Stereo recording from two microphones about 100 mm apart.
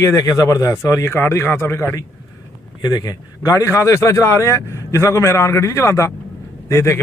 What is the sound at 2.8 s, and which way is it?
A man's voice, 40° left (ahead or behind).